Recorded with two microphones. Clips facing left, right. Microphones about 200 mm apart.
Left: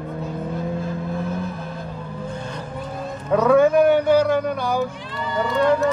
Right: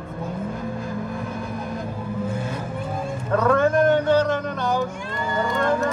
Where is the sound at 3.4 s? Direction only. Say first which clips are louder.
Left 4 dB; 10° left (ahead or behind).